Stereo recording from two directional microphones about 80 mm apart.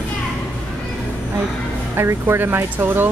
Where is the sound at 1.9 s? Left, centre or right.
Right.